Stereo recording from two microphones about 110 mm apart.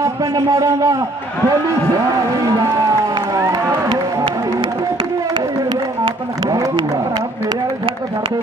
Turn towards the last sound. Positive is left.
turn(degrees=-40)  # may be behind; listen again after turning